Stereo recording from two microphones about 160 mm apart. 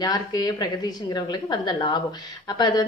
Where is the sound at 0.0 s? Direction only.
25° left (ahead or behind).